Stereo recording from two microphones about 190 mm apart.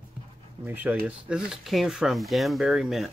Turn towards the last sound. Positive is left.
turn(degrees=0)  # may be behind; listen again after turning